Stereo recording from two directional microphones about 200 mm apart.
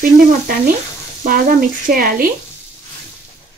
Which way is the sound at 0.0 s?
45° right (ahead or behind).